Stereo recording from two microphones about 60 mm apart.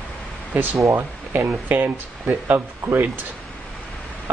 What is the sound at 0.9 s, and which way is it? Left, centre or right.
Speech, right.